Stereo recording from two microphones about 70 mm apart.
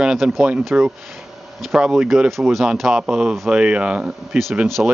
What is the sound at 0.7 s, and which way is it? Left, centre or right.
Speech, centre.